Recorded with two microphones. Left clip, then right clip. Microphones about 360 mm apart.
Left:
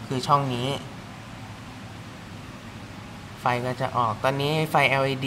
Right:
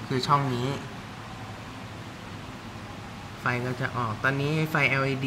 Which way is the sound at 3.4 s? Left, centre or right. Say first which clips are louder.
Left 4 dB; centre.